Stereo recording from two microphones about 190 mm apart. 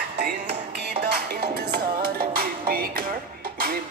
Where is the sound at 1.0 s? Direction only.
60° right (ahead or behind).